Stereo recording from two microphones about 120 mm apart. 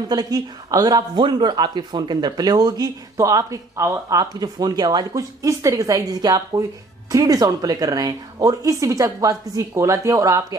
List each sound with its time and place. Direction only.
0.1 s speech: 30° right (ahead or behind)